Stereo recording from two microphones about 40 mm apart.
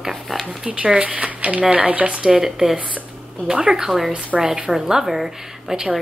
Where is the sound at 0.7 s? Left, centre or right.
Right.